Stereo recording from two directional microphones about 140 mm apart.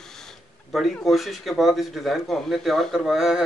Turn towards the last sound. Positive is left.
turn(degrees=-5)  # may be behind; listen again after turning